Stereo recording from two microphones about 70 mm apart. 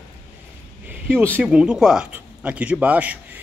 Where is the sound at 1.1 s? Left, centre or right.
Right.